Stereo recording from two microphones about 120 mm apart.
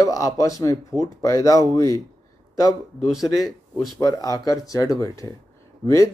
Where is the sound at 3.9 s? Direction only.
30° left (ahead or behind).